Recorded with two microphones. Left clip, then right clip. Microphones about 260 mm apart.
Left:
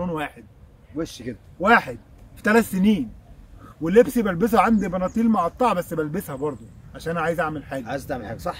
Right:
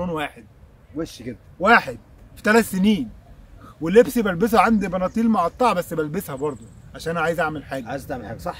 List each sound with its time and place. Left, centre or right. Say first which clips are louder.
0.0 s speech: right 2 dB; centre
0.9 s a man's voice: even; centre
1.6 s speech: right 2 dB; centre
7.8 s a man's voice: left 1 dB; centre